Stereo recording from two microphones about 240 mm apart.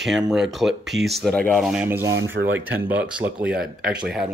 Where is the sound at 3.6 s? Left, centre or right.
Right.